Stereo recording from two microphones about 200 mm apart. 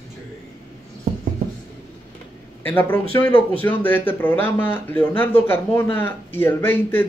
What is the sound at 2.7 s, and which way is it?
A man's voice, 10° left (ahead or behind).